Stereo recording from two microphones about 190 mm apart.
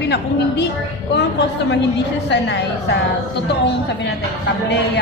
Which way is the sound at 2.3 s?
65° left (ahead or behind).